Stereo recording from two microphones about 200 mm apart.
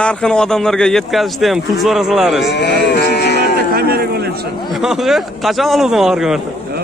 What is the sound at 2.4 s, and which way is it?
Livestock, 55° left (ahead or behind).